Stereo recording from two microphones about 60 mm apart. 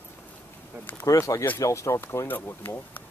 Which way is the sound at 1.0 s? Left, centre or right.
Left.